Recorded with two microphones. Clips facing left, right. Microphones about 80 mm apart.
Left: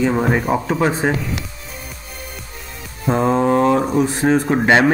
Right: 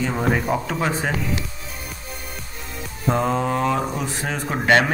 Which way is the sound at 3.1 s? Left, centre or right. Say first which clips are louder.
Left 5 dB; left.